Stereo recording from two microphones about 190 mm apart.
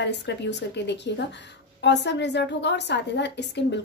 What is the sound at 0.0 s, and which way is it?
A woman's voice, 65° left (ahead or behind).